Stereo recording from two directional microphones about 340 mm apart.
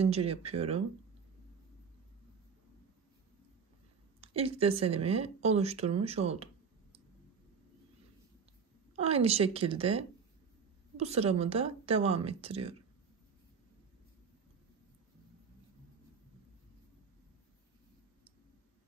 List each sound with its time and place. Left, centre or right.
0.0 s speech: centre
4.2 s speech: centre
9.0 s speech: centre